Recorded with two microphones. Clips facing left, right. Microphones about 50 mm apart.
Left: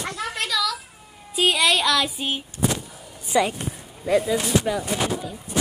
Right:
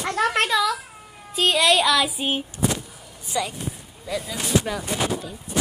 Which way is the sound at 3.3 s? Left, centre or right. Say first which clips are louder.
Left 6 dB; left.